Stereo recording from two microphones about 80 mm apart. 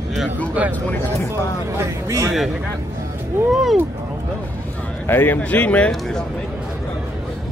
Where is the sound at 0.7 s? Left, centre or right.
Left.